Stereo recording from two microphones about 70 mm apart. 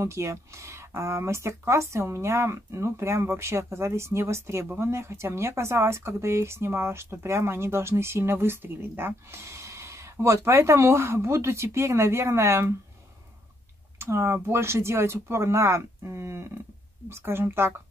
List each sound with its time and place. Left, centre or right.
0.0 s speech: right
13.9 s speech: right